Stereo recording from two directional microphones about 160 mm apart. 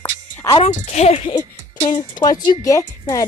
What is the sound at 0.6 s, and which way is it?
Speech, 45° left (ahead or behind).